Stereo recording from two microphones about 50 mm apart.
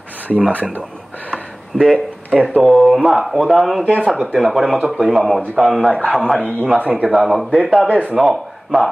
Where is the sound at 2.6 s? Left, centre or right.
Centre.